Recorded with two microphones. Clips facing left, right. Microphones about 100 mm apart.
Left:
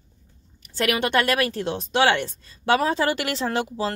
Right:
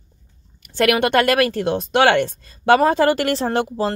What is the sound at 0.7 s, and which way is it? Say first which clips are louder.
A woman's voice: right 6 dB; 60° right (ahead or behind).